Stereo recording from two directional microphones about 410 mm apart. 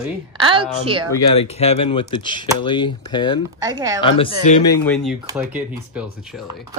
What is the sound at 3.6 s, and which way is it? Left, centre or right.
Speech, centre.